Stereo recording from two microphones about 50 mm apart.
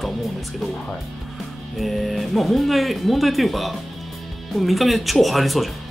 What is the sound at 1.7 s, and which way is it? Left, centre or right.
Speech, centre.